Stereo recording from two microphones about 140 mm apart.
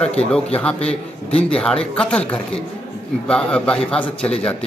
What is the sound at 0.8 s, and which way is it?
Speech, 50° left (ahead or behind).